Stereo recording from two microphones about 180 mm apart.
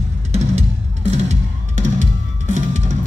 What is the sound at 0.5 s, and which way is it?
Music, 35° right (ahead or behind).